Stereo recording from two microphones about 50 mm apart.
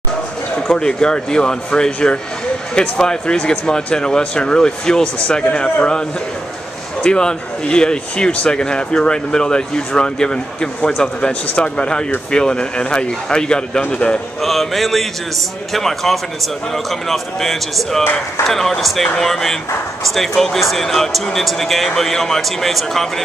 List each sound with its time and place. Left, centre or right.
0.6 s speech: centre
14.4 s speech: centre